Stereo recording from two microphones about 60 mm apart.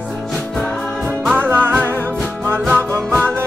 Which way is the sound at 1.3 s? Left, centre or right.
Right.